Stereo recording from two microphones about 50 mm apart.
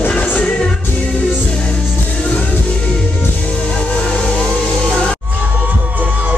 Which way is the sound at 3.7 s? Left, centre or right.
Left.